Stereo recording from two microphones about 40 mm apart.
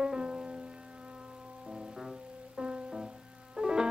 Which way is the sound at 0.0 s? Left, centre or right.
Right.